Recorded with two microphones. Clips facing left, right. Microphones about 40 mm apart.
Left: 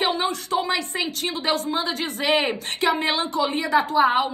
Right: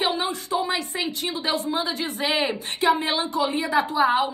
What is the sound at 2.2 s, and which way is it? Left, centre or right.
A woman's voice, left.